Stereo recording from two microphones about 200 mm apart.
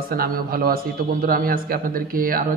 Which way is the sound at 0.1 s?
45° right (ahead or behind).